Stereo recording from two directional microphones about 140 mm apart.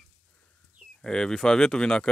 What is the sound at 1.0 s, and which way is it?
Speech, 5° left (ahead or behind).